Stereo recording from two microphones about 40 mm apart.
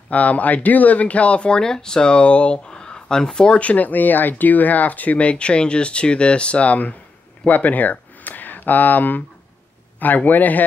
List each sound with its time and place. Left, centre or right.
0.1 s speech: left
1.6 s speech: centre
3.5 s a man's voice: left